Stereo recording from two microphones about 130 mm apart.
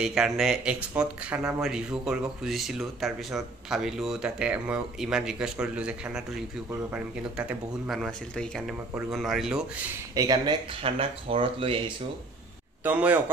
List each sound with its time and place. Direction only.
0.0 s speech: 5° right (ahead or behind)
7.9 s speech: 5° left (ahead or behind)
10.1 s speech: 25° right (ahead or behind); by 11.8 s 45° right (ahead or behind)
12.8 s speech: 10° right (ahead or behind)